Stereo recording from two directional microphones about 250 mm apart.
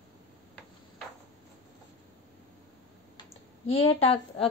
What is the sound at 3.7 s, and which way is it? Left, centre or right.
Speech, left.